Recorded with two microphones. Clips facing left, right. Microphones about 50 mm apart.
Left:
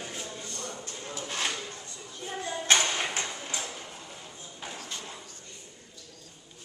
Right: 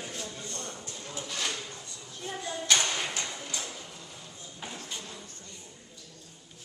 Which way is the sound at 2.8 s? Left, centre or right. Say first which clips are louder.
Left 2 dB; left.